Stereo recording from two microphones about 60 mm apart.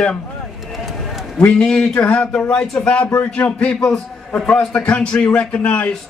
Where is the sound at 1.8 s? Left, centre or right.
Left.